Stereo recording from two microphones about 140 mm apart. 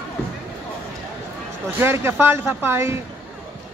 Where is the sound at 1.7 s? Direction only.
15° right (ahead or behind).